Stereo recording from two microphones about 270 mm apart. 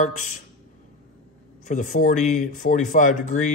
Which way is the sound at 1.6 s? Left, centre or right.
Left.